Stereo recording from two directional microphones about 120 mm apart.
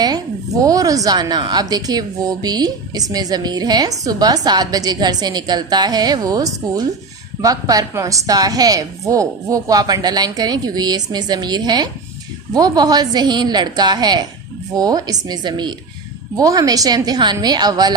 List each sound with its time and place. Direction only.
0.0 s a woman's voice: 30° right (ahead or behind)